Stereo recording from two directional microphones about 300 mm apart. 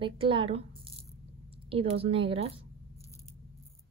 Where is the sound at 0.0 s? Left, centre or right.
Centre.